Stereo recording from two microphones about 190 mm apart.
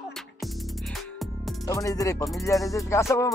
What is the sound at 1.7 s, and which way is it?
Music, 15° left (ahead or behind).